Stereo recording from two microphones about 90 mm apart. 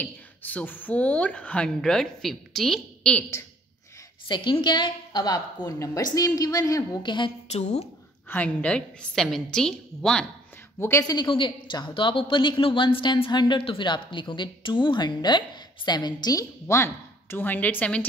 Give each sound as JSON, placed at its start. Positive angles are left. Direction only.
{"t": 0.0, "sound": "speech", "side_deg": 20}
{"t": 4.3, "sound": "a woman's voice", "side_deg": 60}
{"t": 7.0, "sound": "a woman's voice", "side_deg": 60}
{"t": 8.3, "sound": "speech", "side_deg": 15}
{"t": 10.8, "sound": "speech", "side_deg": 30}
{"t": 11.2, "sound": "a woman's voice", "side_deg": 65}